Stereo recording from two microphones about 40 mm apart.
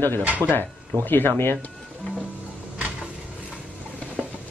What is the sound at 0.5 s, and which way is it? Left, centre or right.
Speech, left.